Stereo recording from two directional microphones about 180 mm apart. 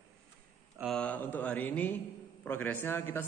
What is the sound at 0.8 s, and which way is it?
Speech, 5° left (ahead or behind).